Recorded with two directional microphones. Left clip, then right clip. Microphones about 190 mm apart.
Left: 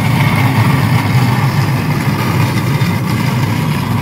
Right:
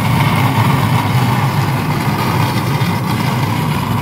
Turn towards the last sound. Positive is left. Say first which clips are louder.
# even
turn(degrees=-25)  # may be behind; listen again after turning